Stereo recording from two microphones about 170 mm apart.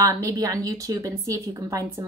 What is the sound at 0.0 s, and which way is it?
Speech, 20° right (ahead or behind).